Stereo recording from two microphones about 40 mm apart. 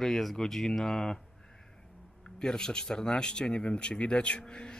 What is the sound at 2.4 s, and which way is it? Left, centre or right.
Speech, centre.